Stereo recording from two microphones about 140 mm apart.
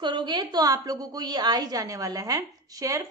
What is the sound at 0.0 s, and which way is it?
A woman's voice, 35° right (ahead or behind).